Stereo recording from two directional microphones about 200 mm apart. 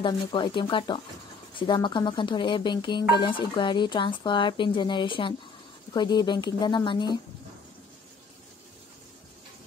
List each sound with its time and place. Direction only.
0.0 s speech: 25° left (ahead or behind)